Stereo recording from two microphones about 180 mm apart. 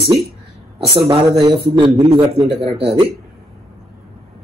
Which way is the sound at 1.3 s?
25° right (ahead or behind).